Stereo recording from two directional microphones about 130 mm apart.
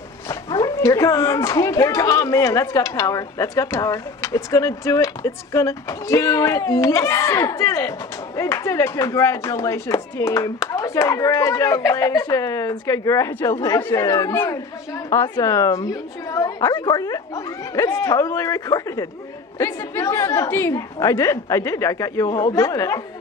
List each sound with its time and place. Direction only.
0.3 s a child's voice: 30° left (ahead or behind)
15.0 s speech: 30° left (ahead or behind)